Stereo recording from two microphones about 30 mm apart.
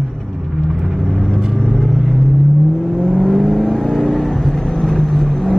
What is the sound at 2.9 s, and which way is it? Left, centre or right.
Vehicle, left.